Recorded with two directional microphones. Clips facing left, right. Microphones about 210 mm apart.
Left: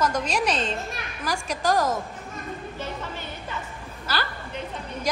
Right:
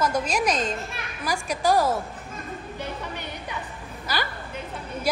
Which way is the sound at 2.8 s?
15° right (ahead or behind).